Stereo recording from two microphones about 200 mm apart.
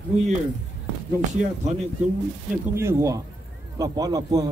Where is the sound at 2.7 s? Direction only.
15° right (ahead or behind).